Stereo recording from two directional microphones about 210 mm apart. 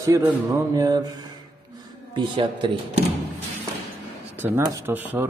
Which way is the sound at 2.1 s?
25° right (ahead or behind).